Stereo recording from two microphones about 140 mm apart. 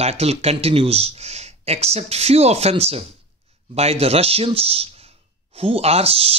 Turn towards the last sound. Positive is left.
turn(degrees=-45)  # may be behind; listen again after turning